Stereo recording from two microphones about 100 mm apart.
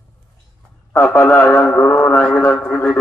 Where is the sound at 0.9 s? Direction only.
25° left (ahead or behind).